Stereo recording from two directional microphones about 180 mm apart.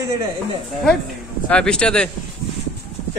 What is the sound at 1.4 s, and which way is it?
Speech, 5° left (ahead or behind).